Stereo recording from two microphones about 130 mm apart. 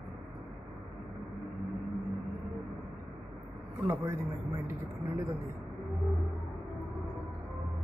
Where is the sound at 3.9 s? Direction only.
20° right (ahead or behind).